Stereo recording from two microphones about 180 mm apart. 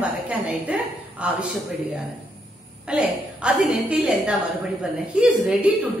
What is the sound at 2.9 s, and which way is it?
A woman's voice, 5° right (ahead or behind).